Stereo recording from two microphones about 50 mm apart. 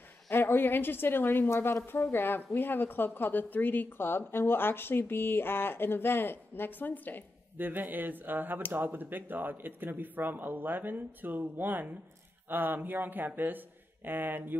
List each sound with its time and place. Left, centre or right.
0.3 s a woman's voice: left
7.5 s speech: right